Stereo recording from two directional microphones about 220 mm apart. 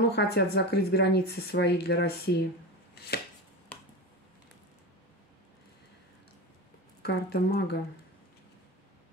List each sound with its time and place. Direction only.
0.1 s speech: 45° left (ahead or behind)
7.0 s speech: 45° left (ahead or behind)